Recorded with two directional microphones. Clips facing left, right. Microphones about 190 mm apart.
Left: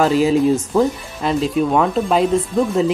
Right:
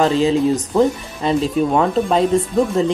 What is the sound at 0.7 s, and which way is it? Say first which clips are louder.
Speech: right 1 dB; centre (ahead or behind).